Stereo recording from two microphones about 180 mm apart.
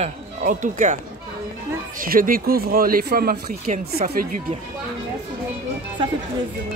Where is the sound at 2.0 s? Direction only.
50° right (ahead or behind).